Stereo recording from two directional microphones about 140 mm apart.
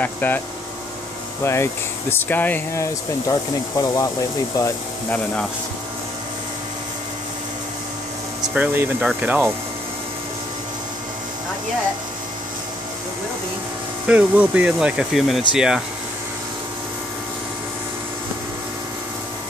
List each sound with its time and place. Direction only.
0.0 s speech: 15° left (ahead or behind)
1.4 s speech: 20° left (ahead or behind)
5.1 s speech: 10° left (ahead or behind)
8.5 s speech: 10° right (ahead or behind)
14.0 s speech: 10° right (ahead or behind)